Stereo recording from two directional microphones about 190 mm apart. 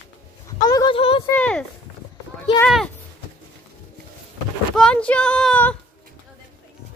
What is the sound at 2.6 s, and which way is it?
Speech, centre (ahead or behind).